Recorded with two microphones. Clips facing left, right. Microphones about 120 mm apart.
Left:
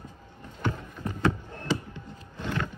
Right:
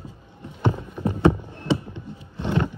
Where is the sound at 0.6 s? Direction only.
20° right (ahead or behind).